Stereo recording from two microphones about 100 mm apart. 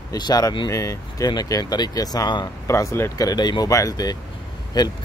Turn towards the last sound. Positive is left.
turn(degrees=45)  # may be behind; listen again after turning